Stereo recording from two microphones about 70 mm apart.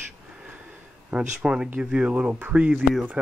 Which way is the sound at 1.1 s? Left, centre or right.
Centre.